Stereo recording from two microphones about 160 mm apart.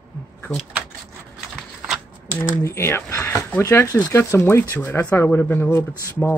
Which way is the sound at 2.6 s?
15° left (ahead or behind).